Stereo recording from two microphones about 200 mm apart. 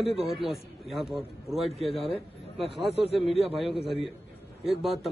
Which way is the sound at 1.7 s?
30° left (ahead or behind).